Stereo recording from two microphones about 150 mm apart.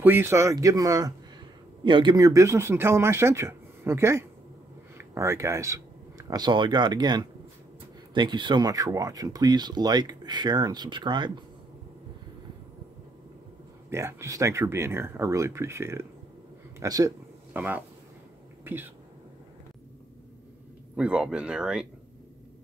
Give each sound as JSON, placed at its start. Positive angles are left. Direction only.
{"t": 0.0, "sound": "speech", "side_deg": -15}
{"t": 13.8, "sound": "speech", "side_deg": -20}
{"t": 17.5, "sound": "speech", "side_deg": -10}
{"t": 18.6, "sound": "a sound", "side_deg": -15}
{"t": 20.9, "sound": "speech", "side_deg": -5}